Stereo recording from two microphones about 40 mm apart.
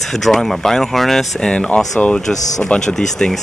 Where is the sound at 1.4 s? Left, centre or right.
Left.